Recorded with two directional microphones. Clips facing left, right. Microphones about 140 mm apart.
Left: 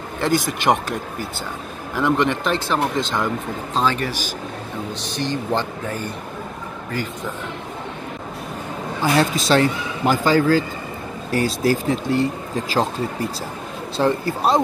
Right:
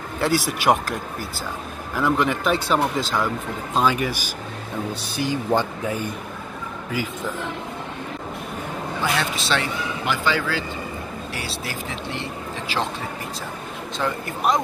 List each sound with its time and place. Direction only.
0.2 s speech: 5° right (ahead or behind)
2.0 s speech: centre (ahead or behind)
9.0 s speech: 40° left (ahead or behind)